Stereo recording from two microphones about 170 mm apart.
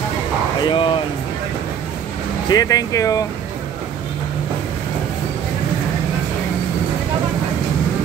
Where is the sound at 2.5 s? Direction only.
20° left (ahead or behind).